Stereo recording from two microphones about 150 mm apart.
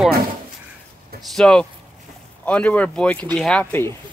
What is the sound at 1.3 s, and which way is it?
Speech, 5° left (ahead or behind).